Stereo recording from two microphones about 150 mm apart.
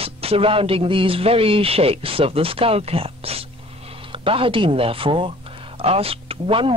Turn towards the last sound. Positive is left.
turn(degrees=-35)  # may be behind; listen again after turning